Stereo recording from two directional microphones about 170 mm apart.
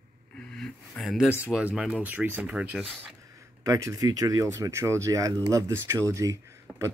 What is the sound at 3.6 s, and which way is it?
Speech, 20° right (ahead or behind).